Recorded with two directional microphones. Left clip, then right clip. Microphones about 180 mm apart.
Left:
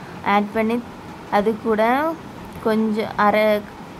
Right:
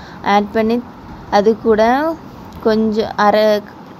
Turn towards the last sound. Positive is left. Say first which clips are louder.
# right 5 dB
turn(degrees=-20)  # may be behind; listen again after turning